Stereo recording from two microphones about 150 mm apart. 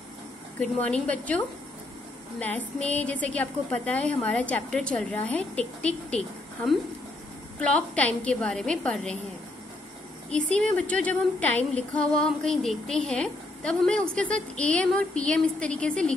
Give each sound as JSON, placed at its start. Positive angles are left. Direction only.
{"t": 0.6, "sound": "a woman's voice", "side_deg": 10}
{"t": 2.4, "sound": "a woman's voice", "side_deg": 10}
{"t": 10.3, "sound": "a woman's voice", "side_deg": 5}